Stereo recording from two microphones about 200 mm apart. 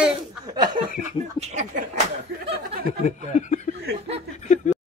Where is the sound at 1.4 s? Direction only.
35° right (ahead or behind).